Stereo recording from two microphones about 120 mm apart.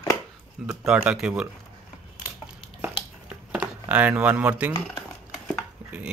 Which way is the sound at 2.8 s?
10° right (ahead or behind).